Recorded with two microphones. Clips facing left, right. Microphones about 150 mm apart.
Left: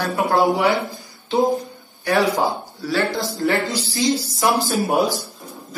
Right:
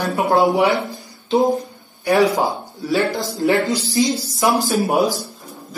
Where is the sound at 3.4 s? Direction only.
20° right (ahead or behind).